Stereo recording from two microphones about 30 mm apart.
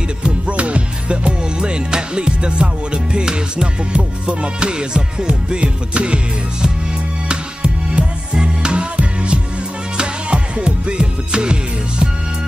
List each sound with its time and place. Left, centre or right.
0.5 s music: right
7.2 s music: right